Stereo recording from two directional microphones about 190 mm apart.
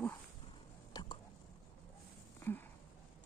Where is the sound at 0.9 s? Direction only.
20° left (ahead or behind).